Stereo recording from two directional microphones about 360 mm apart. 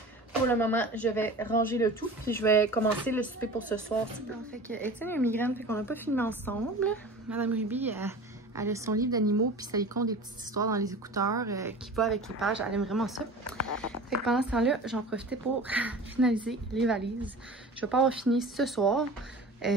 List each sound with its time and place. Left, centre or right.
0.5 s a woman's voice: centre
9.2 s speech: right
9.6 s a woman's voice: centre